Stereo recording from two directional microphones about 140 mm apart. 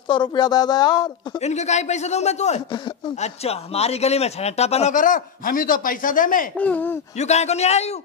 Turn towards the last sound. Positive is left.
turn(degrees=50)  # may be behind; listen again after turning